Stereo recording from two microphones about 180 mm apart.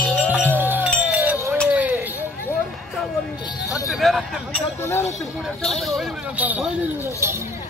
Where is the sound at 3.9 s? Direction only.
Centre (ahead or behind).